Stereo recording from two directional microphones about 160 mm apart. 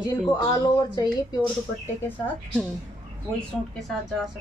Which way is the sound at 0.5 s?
25° left (ahead or behind).